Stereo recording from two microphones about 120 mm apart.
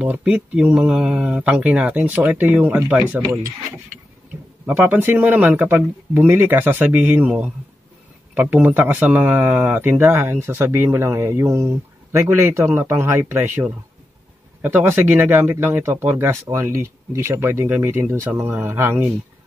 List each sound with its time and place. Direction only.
0.0 s speech: 10° right (ahead or behind)
4.6 s speech: 15° right (ahead or behind)